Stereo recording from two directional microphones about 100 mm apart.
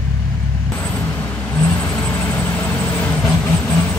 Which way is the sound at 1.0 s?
15° left (ahead or behind).